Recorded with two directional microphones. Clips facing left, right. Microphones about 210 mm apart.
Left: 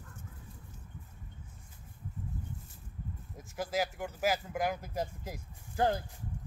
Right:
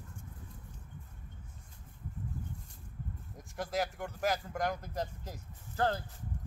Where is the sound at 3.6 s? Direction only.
Centre (ahead or behind).